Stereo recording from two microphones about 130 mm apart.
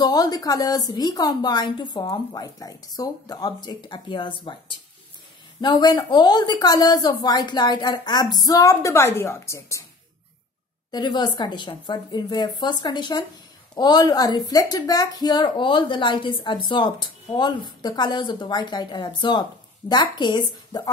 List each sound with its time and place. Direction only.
0.0 s speech: 30° left (ahead or behind)
10.9 s speech: 35° left (ahead or behind)